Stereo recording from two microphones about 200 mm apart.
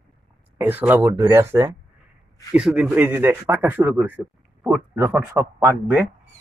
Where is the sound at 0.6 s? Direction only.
10° right (ahead or behind).